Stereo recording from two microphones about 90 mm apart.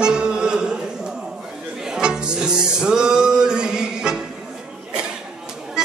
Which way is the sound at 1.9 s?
10° right (ahead or behind).